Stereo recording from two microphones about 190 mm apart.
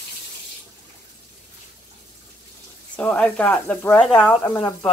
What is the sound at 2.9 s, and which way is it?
Speech, 5° left (ahead or behind).